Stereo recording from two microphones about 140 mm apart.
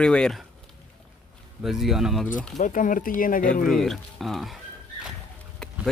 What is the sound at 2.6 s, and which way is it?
Speech, 70° left (ahead or behind).